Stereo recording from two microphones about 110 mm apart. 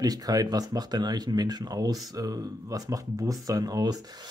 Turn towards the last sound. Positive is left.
turn(degrees=-35)  # may be behind; listen again after turning